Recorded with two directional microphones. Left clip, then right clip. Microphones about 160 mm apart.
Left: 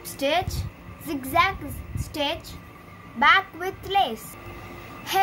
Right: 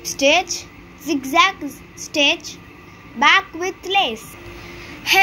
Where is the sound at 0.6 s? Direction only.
15° right (ahead or behind).